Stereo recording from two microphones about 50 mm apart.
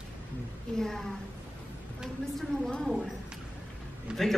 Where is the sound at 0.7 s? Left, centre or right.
Centre.